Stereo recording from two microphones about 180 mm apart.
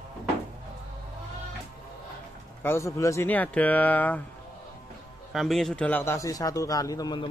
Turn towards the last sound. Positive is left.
turn(degrees=20)  # may be behind; listen again after turning